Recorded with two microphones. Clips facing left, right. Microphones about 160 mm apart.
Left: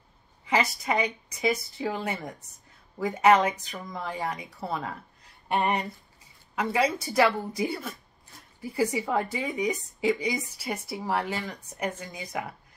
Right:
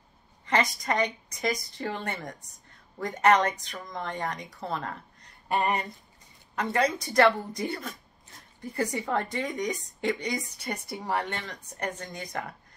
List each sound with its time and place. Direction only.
0.5 s a woman's voice: 5° left (ahead or behind)